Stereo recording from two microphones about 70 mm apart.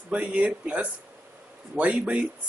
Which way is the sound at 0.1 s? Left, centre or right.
Centre.